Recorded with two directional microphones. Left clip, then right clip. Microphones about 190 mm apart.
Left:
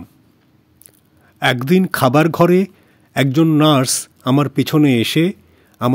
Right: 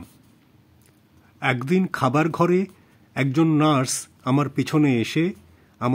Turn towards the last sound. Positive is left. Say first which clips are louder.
# left 6 dB
turn(degrees=30)  # may be behind; listen again after turning